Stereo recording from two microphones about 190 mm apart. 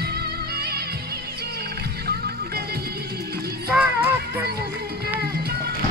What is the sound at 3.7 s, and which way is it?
Music, 5° right (ahead or behind).